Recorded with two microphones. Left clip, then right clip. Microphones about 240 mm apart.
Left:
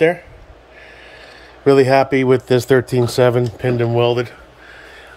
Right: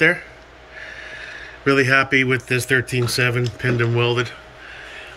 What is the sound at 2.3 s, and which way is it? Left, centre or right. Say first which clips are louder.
Speech: left 5 dB; centre.